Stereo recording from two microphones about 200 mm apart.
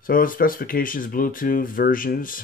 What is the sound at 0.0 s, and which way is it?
Speech, 45° left (ahead or behind).